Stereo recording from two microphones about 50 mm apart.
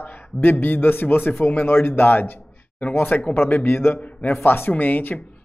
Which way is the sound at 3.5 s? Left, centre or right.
Left.